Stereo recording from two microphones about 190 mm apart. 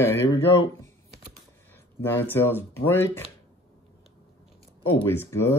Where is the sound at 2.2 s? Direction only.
10° left (ahead or behind).